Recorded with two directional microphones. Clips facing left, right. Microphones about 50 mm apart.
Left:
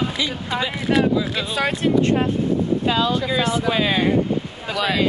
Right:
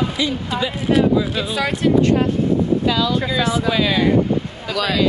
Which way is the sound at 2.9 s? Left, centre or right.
Left.